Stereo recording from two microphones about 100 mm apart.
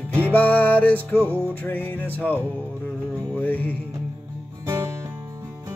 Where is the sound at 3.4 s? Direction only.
15° left (ahead or behind).